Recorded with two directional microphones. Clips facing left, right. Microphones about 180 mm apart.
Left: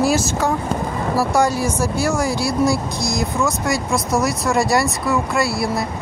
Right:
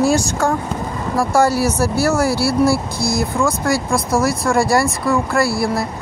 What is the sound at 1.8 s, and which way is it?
Speech, 15° left (ahead or behind).